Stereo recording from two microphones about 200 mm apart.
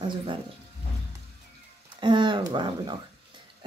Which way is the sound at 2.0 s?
25° right (ahead or behind).